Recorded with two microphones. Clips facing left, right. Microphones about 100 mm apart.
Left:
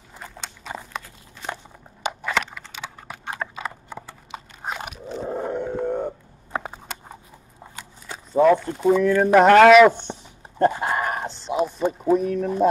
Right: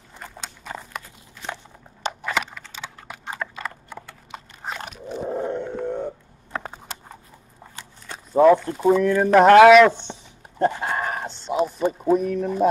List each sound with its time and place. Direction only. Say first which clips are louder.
2.2 s computer keyboard: left 1 dB; centre (ahead or behind)
2.7 s typing: left 1 dB; 10° left (ahead or behind)
3.5 s pig: left 1 dB; 10° left (ahead or behind)
5.0 s roar: right 2 dB; 15° right (ahead or behind)
5.3 s a sound: left 1 dB; 5° left (ahead or behind)
8.1 s speech: right 2 dB; 5° right (ahead or behind)
10.1 s a sound: left 3 dB; 15° left (ahead or behind)
10.7 s dog: left 2 dB; 10° left (ahead or behind)